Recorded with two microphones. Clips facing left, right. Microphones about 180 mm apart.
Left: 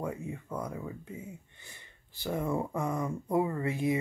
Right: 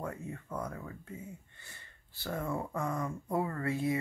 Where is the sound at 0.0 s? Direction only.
10° left (ahead or behind).